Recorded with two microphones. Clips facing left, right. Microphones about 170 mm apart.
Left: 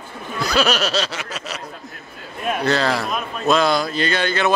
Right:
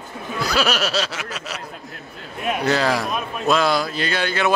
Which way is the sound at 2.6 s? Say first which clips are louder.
Even; 10° right (ahead or behind).